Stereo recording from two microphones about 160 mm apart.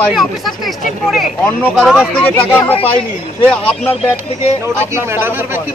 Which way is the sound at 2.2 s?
15° left (ahead or behind).